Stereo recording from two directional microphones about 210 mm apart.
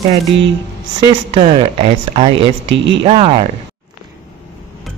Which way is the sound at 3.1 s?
30° right (ahead or behind).